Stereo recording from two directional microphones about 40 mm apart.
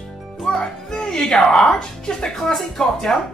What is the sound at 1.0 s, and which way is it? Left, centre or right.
Speech, centre.